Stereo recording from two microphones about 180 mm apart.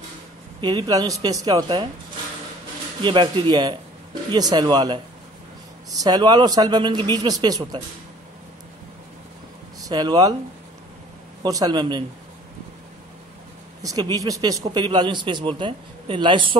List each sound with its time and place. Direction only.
0.6 s a man's voice: 25° right (ahead or behind)
3.0 s a man's voice: 25° right (ahead or behind)
9.8 s speech: 20° right (ahead or behind)
11.4 s a man's voice: 20° right (ahead or behind)
13.8 s a man's voice: 20° right (ahead or behind)